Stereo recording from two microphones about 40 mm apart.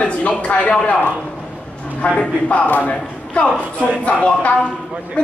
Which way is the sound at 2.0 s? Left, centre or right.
Left.